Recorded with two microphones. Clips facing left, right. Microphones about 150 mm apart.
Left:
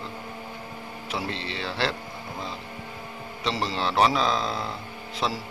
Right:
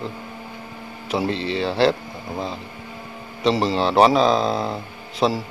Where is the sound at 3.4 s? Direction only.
40° right (ahead or behind).